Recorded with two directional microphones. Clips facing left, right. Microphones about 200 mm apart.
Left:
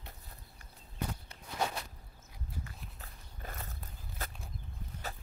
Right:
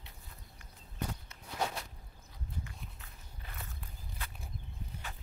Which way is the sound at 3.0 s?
40° left (ahead or behind).